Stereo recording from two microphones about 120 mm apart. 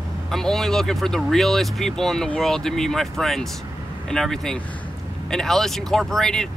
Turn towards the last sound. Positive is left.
turn(degrees=5)  # may be behind; listen again after turning